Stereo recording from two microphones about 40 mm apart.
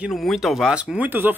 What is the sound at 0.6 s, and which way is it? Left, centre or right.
Speech, centre.